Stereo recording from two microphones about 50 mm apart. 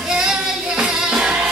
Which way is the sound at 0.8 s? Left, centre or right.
Centre.